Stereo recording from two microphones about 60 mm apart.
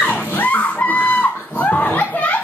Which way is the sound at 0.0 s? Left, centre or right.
Left.